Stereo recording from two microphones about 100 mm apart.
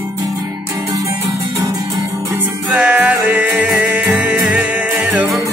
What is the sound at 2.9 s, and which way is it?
Music, 15° right (ahead or behind).